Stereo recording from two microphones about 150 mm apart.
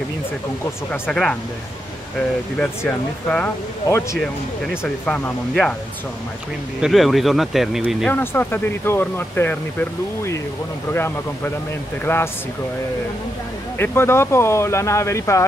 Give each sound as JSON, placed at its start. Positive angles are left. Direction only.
{"t": 1.0, "sound": "speech", "side_deg": 5}
{"t": 2.6, "sound": "speech", "side_deg": 10}
{"t": 6.8, "sound": "speech", "side_deg": 0}
{"t": 8.1, "sound": "speech", "side_deg": 15}
{"t": 13.7, "sound": "speech", "side_deg": 15}